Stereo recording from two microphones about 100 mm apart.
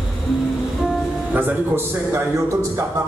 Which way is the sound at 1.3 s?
20° right (ahead or behind).